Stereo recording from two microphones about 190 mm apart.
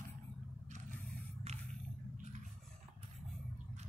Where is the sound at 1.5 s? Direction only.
35° right (ahead or behind).